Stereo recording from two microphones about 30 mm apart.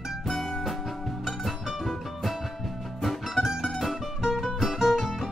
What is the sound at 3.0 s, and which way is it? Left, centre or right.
Music, centre.